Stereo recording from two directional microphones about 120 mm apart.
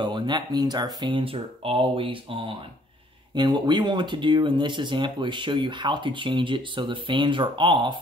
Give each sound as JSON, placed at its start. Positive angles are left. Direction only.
{"t": 0.0, "sound": "speech", "side_deg": -40}